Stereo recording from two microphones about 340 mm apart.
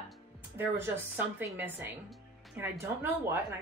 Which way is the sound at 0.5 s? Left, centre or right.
Centre.